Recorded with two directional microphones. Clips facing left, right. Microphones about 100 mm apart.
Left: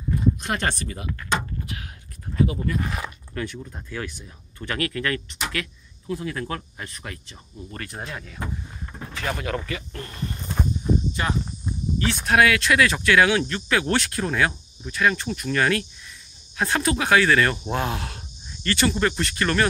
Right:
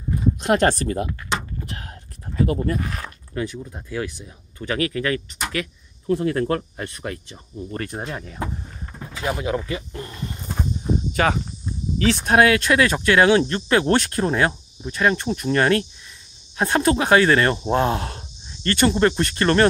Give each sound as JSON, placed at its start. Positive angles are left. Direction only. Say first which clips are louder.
{"t": 0.5, "sound": "speech", "louder": "right 8 dB", "side_deg": -40}
{"t": 1.7, "sound": "a sound", "louder": "right 1 dB", "side_deg": -40}
{"t": 2.4, "sound": "speech", "louder": "right 3 dB", "side_deg": -45}
{"t": 2.8, "sound": "speech", "louder": "left 1 dB", "side_deg": 5}
{"t": 3.3, "sound": "speech", "louder": "right 5 dB", "side_deg": -15}
{"t": 6.1, "sound": "speech", "louder": "right 8 dB", "side_deg": -40}
{"t": 7.7, "sound": "speech", "louder": "right 5 dB", "side_deg": -30}
{"t": 9.1, "sound": "speech", "louder": "right 4 dB", "side_deg": -20}
{"t": 10.4, "sound": "a sound", "louder": "left 1 dB", "side_deg": 0}
{"t": 11.2, "sound": "speech", "louder": "right 7 dB", "side_deg": -65}
{"t": 12.3, "sound": "speech", "louder": "right 2 dB", "side_deg": -35}